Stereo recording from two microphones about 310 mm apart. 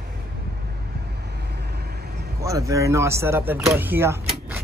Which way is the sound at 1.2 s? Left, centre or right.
Right.